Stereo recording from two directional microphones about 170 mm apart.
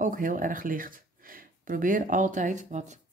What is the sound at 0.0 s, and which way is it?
Speech, 50° right (ahead or behind).